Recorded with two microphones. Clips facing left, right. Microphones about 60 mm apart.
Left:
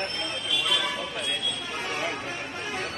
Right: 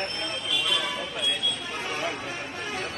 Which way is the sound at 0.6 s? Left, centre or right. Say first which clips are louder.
Left 1 dB; left.